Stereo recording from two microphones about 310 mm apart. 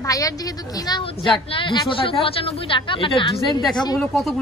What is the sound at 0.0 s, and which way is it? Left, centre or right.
A woman's voice, centre.